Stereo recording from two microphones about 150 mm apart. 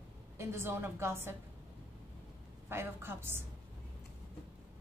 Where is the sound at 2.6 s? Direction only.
15° right (ahead or behind).